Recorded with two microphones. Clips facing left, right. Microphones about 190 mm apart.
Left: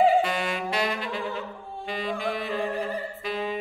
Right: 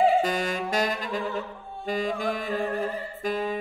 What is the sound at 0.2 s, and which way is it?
Saxophone, 40° right (ahead or behind).